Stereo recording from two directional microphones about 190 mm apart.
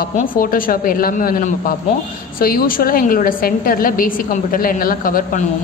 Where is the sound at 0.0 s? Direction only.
45° left (ahead or behind).